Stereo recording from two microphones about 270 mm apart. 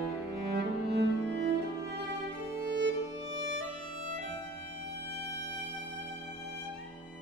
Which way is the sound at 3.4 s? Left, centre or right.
Right.